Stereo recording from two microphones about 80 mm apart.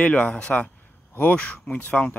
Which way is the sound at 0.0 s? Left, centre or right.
Centre.